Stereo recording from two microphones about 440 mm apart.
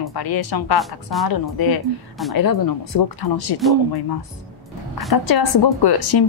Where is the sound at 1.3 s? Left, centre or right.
Left.